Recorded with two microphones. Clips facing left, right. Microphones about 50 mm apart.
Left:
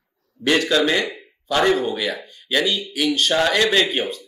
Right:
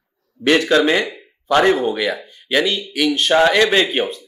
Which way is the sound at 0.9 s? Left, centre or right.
Centre.